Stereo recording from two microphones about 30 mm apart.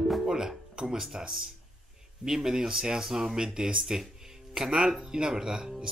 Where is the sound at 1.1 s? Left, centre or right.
Centre.